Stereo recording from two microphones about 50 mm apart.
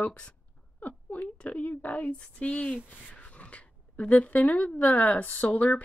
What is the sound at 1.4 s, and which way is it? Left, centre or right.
Speech, left.